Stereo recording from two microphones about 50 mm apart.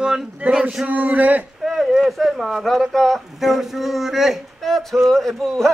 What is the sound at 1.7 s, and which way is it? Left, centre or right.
Speech, centre.